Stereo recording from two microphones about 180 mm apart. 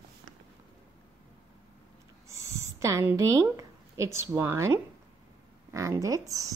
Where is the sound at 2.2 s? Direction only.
15° right (ahead or behind).